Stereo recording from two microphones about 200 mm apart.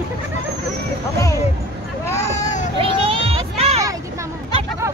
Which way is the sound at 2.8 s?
25° right (ahead or behind).